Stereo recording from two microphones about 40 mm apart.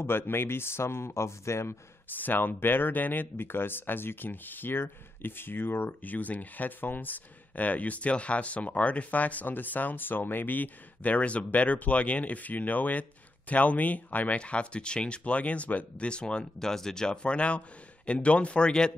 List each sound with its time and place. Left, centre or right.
0.0 s speech: left
2.1 s speech: left
6.0 s speech: left
14.4 s speech: left
16.5 s speech: centre; by 18.7 s left
18.7 s speech: centre